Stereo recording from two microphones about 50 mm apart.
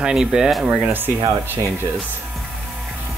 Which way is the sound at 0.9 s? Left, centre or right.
Right.